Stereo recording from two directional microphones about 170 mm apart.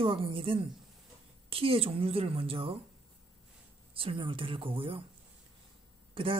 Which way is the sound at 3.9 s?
30° right (ahead or behind).